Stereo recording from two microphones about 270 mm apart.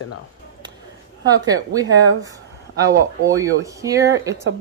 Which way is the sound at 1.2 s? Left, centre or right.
Centre.